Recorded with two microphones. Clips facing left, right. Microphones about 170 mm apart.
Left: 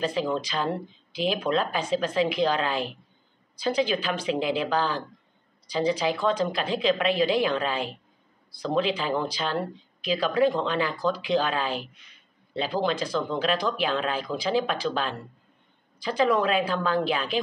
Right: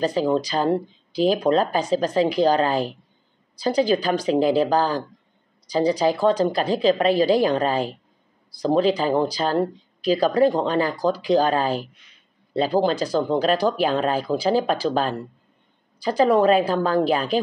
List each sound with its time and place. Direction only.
0.0 s speech: 35° right (ahead or behind)